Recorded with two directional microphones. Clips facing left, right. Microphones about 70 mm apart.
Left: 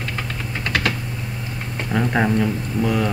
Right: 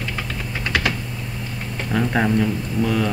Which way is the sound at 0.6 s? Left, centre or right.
Centre.